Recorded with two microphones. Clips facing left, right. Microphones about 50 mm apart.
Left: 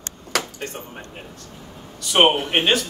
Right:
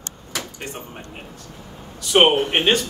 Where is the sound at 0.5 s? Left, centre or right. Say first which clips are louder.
Left 1 dB; centre.